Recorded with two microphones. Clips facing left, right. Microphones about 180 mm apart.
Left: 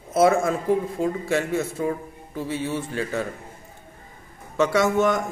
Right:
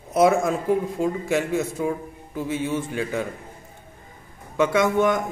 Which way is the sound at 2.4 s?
15° right (ahead or behind).